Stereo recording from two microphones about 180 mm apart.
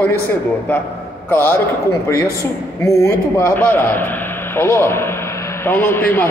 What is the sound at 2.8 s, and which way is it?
Speech, 15° left (ahead or behind).